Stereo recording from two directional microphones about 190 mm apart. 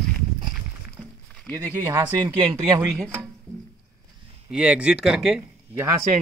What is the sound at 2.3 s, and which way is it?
Speech, 25° right (ahead or behind).